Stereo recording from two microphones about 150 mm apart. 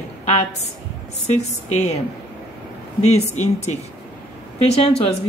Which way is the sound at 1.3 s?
50° left (ahead or behind).